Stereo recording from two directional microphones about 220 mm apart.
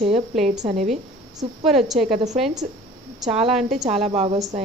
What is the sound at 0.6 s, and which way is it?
Speech, 30° right (ahead or behind).